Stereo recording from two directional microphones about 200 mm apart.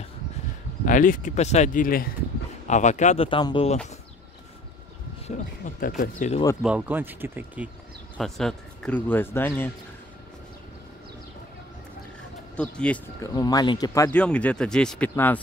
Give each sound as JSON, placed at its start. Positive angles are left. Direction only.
{"t": 0.8, "sound": "speech", "side_deg": 40}
{"t": 5.3, "sound": "speech", "side_deg": 35}
{"t": 6.6, "sound": "speech", "side_deg": -10}
{"t": 8.2, "sound": "speech", "side_deg": 0}
{"t": 12.5, "sound": "speech", "side_deg": 5}
{"t": 13.2, "sound": "speech", "side_deg": 15}
{"t": 14.2, "sound": "speech", "side_deg": 5}